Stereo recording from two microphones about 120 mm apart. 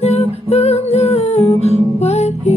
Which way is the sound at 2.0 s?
65° left (ahead or behind).